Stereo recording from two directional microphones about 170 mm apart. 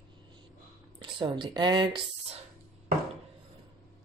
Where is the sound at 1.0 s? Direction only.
30° right (ahead or behind).